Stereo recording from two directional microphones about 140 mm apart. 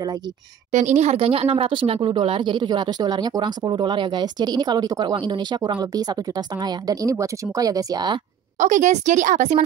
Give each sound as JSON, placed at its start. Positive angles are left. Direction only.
{"t": 0.7, "sound": "speech", "side_deg": -60}
{"t": 8.5, "sound": "a woman's voice", "side_deg": -60}